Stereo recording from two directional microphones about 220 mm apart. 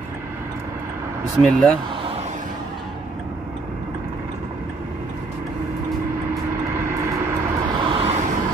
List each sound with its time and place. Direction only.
1.4 s speech: 5° left (ahead or behind)
6.3 s vehicle: 10° right (ahead or behind); by 8.3 s 25° right (ahead or behind)